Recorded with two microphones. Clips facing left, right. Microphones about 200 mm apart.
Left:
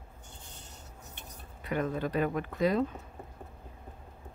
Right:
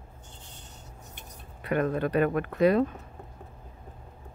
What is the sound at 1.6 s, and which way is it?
Speech, 60° right (ahead or behind).